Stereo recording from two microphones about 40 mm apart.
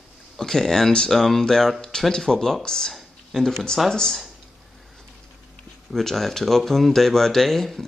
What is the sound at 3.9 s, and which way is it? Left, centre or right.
Speech, centre.